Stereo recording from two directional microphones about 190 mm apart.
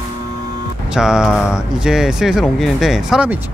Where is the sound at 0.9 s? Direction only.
5° right (ahead or behind).